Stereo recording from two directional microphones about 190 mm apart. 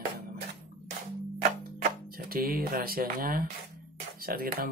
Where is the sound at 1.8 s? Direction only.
50° right (ahead or behind).